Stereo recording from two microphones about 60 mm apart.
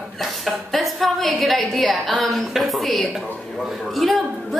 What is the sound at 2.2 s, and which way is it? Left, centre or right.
A woman's voice, centre.